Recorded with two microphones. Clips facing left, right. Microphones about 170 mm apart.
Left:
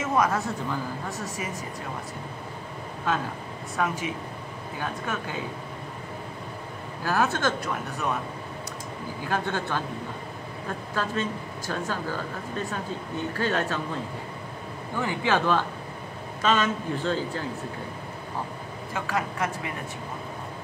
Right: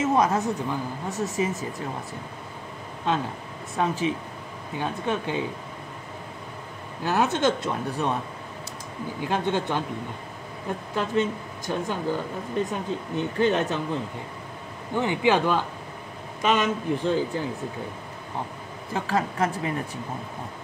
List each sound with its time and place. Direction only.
0.0 s speech: 25° right (ahead or behind)
3.7 s speech: 30° right (ahead or behind)
7.0 s speech: 20° right (ahead or behind)
9.2 s speech: 20° right (ahead or behind)
11.0 s speech: 20° right (ahead or behind)
15.0 s a man's voice: 20° right (ahead or behind)
18.9 s speech: 30° right (ahead or behind)